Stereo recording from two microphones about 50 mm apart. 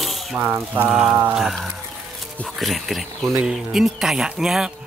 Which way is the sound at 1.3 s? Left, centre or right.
Centre.